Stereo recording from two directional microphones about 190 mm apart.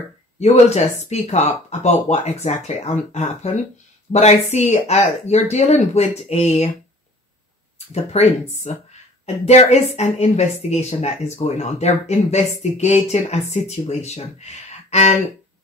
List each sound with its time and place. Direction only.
0.4 s speech: 35° left (ahead or behind)
7.9 s speech: 35° left (ahead or behind)